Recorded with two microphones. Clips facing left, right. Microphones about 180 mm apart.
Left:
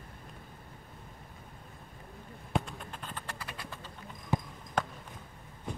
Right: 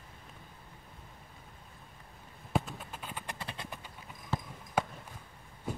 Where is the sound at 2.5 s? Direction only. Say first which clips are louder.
Even; 5° right (ahead or behind).